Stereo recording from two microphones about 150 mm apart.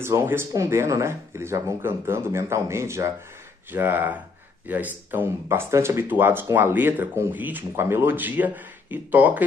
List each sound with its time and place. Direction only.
0.0 s speech: 15° right (ahead or behind)